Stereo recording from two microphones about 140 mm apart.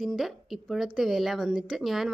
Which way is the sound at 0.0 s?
Centre (ahead or behind).